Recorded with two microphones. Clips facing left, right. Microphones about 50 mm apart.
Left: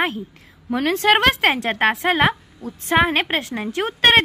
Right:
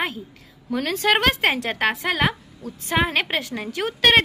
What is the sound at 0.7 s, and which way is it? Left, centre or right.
A woman's voice, left.